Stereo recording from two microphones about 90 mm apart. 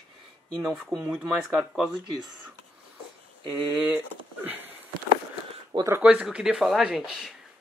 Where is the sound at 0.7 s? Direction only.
5° right (ahead or behind).